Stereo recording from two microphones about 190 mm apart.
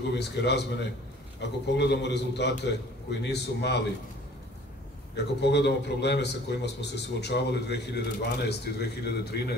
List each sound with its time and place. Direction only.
0.1 s a man's voice: 60° left (ahead or behind)
5.1 s a man's voice: 65° left (ahead or behind)